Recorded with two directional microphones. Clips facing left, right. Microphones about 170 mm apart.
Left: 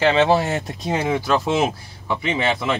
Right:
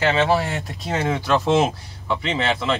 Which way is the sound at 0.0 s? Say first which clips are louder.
Left 3 dB; 20° left (ahead or behind).